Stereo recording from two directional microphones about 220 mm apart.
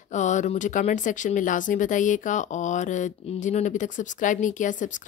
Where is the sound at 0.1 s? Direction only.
35° left (ahead or behind).